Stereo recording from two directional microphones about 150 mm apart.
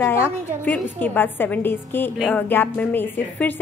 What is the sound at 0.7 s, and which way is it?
A woman's voice, 10° left (ahead or behind).